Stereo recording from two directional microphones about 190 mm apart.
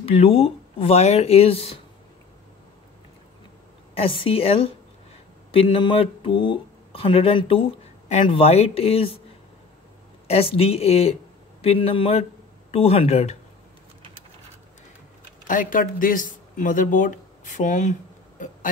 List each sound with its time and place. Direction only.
0.0 s speech: 30° left (ahead or behind)
3.9 s a woman's voice: 30° left (ahead or behind)
10.2 s speech: 30° left (ahead or behind)
15.4 s speech: 45° left (ahead or behind)